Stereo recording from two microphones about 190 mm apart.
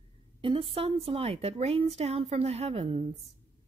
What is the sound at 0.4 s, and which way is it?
Speech, 30° right (ahead or behind).